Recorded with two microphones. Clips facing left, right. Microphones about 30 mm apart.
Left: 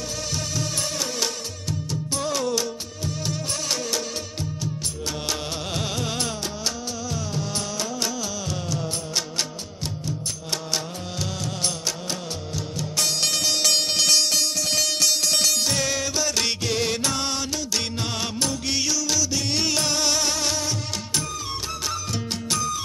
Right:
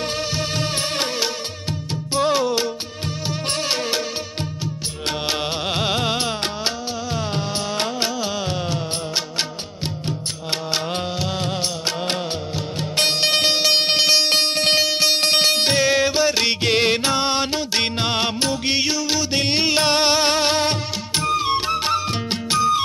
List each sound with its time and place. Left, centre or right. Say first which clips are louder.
0.4 s music: right 5 dB; right
2.1 s music: right 7 dB; right
5.3 s music: right 6 dB; right
7.3 s music of bollywood: right 5 dB; right
10.0 s music: right 4 dB; right
12.9 s music: right 6 dB; right
14.9 s music: right 5 dB; right
16.6 s music: right 6 dB; right